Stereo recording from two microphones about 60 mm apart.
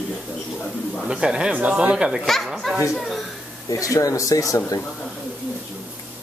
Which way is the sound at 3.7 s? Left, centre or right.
Left.